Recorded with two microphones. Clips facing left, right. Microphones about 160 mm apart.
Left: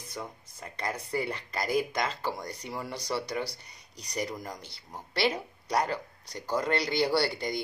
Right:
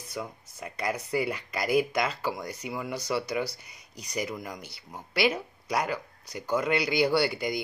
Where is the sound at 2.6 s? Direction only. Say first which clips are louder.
Right 3 dB; 10° right (ahead or behind).